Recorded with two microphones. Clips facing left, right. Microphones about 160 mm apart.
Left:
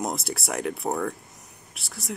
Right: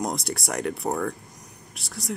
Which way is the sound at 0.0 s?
5° left (ahead or behind).